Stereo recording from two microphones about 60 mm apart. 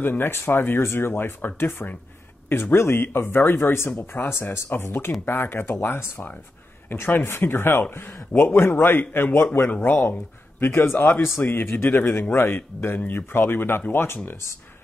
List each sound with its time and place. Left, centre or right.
0.0 s speech: left